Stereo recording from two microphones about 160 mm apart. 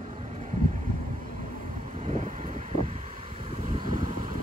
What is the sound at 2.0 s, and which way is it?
Vehicle, 45° right (ahead or behind).